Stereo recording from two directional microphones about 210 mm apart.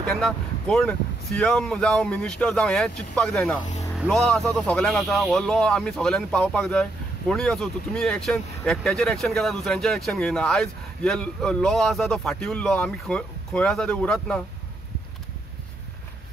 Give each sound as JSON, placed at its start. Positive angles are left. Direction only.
{"t": 0.0, "sound": "speech", "side_deg": 5}